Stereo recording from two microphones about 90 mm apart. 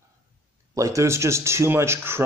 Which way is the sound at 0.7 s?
35° right (ahead or behind).